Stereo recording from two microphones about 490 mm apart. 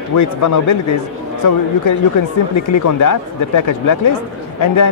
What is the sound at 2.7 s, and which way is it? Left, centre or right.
Speech, left.